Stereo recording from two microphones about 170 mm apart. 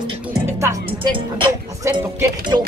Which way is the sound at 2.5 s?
20° right (ahead or behind).